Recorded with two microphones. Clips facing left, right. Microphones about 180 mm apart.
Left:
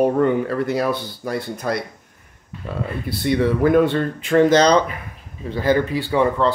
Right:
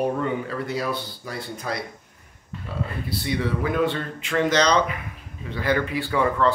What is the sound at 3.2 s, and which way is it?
Speech, 50° left (ahead or behind).